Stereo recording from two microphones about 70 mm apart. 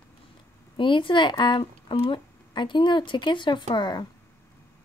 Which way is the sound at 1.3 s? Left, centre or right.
Left.